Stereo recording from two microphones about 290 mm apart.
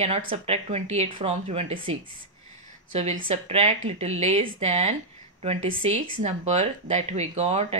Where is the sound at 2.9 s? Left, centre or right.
Right.